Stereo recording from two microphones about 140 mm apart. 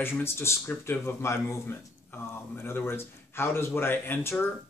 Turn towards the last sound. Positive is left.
turn(degrees=15)  # may be behind; listen again after turning